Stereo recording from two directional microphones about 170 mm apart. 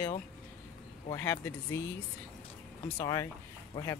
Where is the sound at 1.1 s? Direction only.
15° left (ahead or behind).